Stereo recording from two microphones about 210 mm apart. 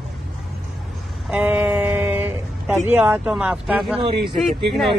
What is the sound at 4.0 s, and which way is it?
Speech, 25° right (ahead or behind).